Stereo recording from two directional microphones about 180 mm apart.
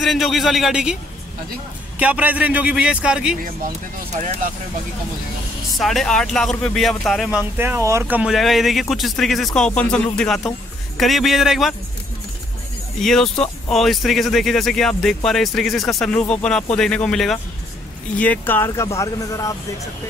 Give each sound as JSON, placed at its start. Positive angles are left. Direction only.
{"t": 0.0, "sound": "speech", "side_deg": 0}
{"t": 2.0, "sound": "a man's voice", "side_deg": -10}
{"t": 4.1, "sound": "speech", "side_deg": -40}
{"t": 5.8, "sound": "speech", "side_deg": 0}
{"t": 13.0, "sound": "speech", "side_deg": 5}